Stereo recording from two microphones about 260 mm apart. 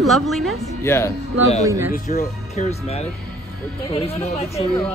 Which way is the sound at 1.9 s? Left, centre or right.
Left.